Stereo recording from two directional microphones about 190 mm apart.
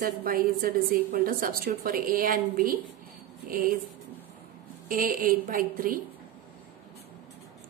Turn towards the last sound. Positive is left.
turn(degrees=-50)  # may be behind; listen again after turning